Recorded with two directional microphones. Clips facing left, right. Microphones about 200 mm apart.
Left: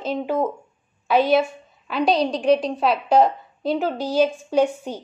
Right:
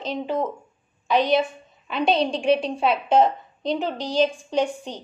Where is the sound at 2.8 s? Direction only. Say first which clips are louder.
Left 1 dB; centre (ahead or behind).